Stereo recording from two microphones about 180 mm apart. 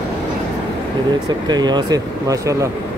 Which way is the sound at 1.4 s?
25° right (ahead or behind).